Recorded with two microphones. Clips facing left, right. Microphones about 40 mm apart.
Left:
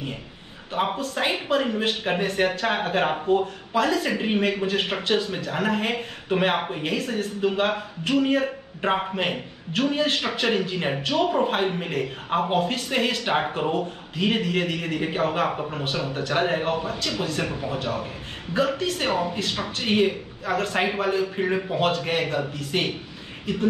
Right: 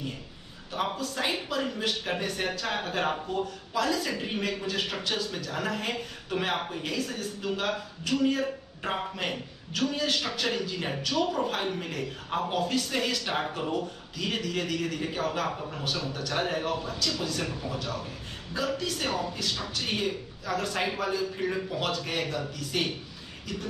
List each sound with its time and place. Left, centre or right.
0.7 s speech: left